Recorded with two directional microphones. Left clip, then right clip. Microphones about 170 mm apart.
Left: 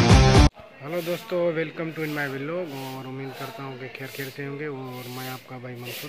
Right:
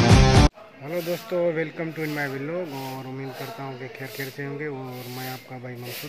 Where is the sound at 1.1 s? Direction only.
5° left (ahead or behind).